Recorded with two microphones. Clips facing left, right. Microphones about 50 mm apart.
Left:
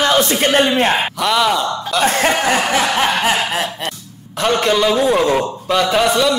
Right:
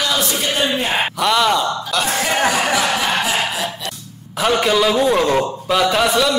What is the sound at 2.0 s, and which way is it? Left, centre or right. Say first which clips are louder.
Speech: left 8 dB; left.